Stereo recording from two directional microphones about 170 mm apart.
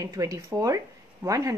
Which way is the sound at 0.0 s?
20° right (ahead or behind).